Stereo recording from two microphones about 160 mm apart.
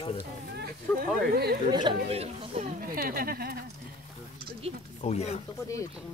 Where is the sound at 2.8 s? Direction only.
65° right (ahead or behind).